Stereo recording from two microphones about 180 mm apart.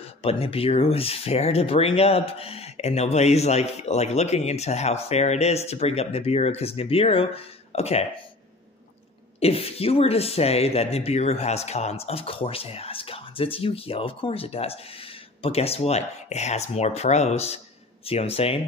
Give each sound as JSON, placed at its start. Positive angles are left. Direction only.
{"t": 0.0, "sound": "speech", "side_deg": 30}
{"t": 9.4, "sound": "speech", "side_deg": 35}